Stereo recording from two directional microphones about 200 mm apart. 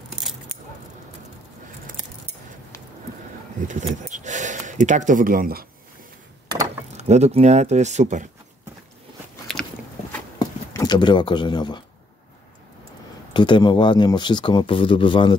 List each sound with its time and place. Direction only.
3.6 s speech: 40° right (ahead or behind)
7.0 s speech: 35° right (ahead or behind)
9.5 s biting: 5° left (ahead or behind)
10.7 s speech: 20° left (ahead or behind)
13.3 s speech: 25° left (ahead or behind)